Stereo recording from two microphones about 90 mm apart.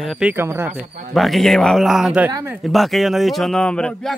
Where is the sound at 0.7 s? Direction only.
Centre (ahead or behind).